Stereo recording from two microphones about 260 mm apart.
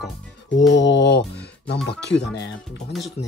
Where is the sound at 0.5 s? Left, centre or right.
Left.